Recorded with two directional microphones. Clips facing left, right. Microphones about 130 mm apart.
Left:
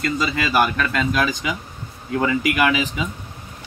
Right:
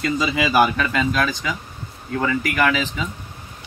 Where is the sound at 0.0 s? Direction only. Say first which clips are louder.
Right 1 dB; 10° right (ahead or behind).